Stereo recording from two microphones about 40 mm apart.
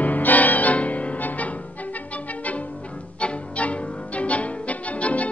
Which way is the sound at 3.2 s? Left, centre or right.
Left.